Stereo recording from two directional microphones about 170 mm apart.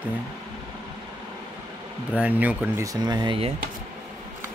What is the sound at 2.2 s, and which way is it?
Speech, 10° right (ahead or behind).